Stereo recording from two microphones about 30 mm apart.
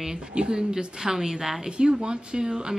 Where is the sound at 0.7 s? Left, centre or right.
Centre.